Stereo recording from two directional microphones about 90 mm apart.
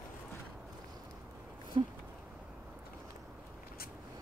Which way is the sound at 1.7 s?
75° right (ahead or behind).